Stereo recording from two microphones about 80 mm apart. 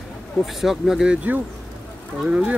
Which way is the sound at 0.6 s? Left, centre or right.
Centre.